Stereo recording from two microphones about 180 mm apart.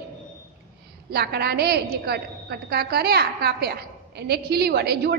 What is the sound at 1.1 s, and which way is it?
A woman's voice, 60° right (ahead or behind).